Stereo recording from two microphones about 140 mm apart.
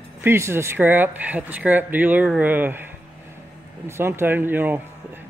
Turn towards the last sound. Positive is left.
turn(degrees=-15)  # may be behind; listen again after turning